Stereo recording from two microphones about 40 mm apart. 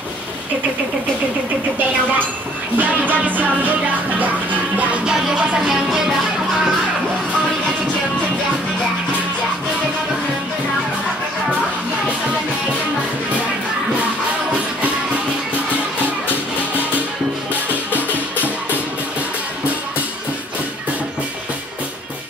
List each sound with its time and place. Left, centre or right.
2.8 s music: right
5.6 s music: centre